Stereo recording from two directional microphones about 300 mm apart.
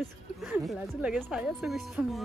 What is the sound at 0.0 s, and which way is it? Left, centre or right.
A woman's voice, centre.